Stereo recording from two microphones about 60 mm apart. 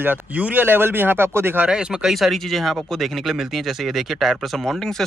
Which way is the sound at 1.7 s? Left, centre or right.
Centre.